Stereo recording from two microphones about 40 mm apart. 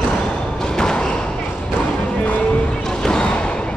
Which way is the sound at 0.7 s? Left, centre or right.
Centre.